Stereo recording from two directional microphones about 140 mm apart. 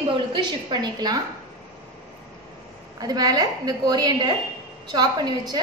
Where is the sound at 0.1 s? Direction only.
35° right (ahead or behind).